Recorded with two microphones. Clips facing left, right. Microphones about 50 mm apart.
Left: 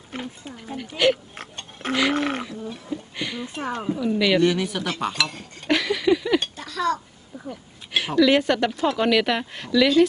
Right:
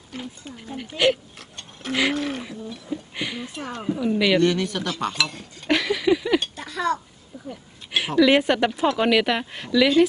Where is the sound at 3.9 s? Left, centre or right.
Centre.